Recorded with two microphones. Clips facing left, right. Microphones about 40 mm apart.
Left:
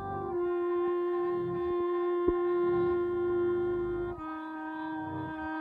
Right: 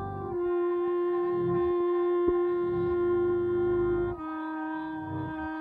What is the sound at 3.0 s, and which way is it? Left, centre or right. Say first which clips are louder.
Shofar: right 5 dB; centre.